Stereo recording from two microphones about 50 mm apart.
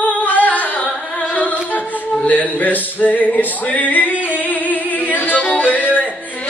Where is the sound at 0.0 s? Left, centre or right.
Left.